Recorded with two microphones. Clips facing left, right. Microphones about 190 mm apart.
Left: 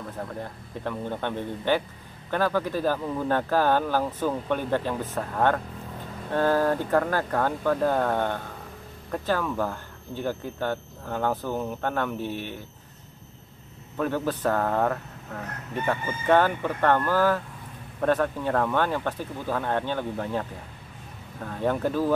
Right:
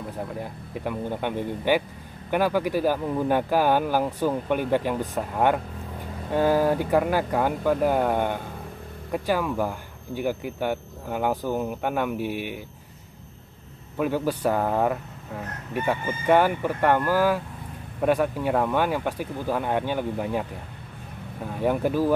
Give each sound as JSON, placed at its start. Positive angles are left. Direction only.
{"t": 0.4, "sound": "speech", "side_deg": -10}
{"t": 13.9, "sound": "speech", "side_deg": -10}